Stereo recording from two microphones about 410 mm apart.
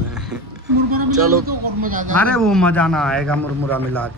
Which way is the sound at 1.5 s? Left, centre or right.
Centre.